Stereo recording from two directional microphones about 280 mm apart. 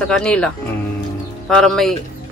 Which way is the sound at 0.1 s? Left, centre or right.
Centre.